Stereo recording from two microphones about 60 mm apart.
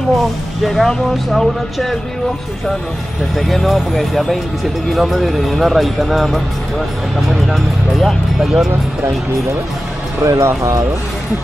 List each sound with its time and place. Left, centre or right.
0.6 s speech: centre
3.3 s speech: centre
10.2 s speech: right